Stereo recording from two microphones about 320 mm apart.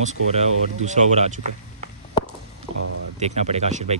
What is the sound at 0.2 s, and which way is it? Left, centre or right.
Speech, right.